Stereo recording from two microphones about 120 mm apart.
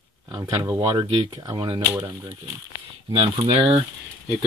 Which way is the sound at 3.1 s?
50° right (ahead or behind).